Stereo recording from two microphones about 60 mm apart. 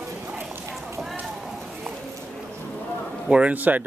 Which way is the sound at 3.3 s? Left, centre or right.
Right.